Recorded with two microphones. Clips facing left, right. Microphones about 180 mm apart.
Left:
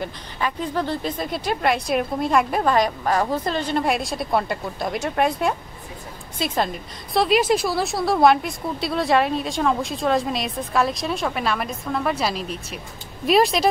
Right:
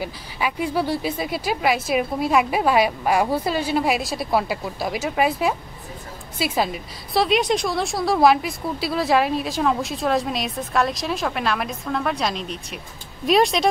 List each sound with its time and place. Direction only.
0.0 s a woman's voice: 10° right (ahead or behind)